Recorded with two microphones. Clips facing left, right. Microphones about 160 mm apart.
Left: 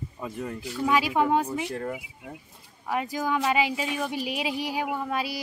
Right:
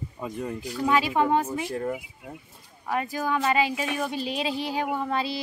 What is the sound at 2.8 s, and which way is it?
Speech, 15° left (ahead or behind).